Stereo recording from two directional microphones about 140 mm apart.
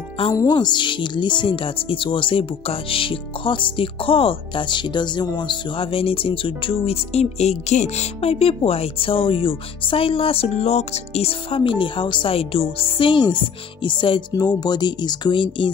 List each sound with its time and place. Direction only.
0.3 s speech: 25° left (ahead or behind)